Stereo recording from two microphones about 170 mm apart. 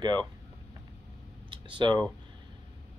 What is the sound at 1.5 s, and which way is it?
Speech, 30° right (ahead or behind).